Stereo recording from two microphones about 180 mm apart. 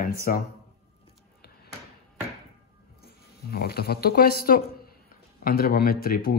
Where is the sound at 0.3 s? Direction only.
50° left (ahead or behind).